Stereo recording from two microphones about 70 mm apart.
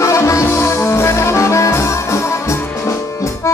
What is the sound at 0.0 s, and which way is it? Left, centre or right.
Music, left.